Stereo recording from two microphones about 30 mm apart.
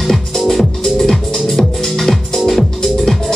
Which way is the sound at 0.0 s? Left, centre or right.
Centre.